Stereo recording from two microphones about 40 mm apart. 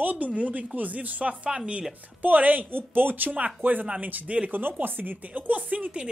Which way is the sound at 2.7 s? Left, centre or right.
Right.